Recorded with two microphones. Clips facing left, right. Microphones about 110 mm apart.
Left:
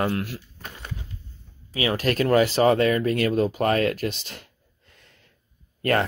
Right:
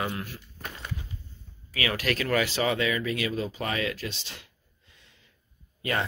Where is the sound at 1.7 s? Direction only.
30° left (ahead or behind); by 4.4 s 50° left (ahead or behind).